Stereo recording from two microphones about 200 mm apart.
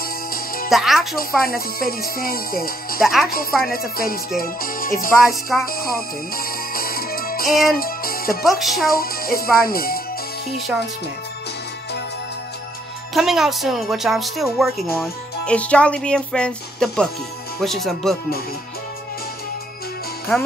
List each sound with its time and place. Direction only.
0.0 s music: 45° left (ahead or behind)
0.7 s speech: centre (ahead or behind)
1.1 s music: 45° left (ahead or behind)
3.0 s speech: centre (ahead or behind)
3.7 s music: 45° left (ahead or behind)
5.2 s speech: centre (ahead or behind)
5.7 s music: 45° left (ahead or behind)
8.5 s speech: centre (ahead or behind)
8.8 s music: 45° left (ahead or behind)
13.1 s speech: centre (ahead or behind)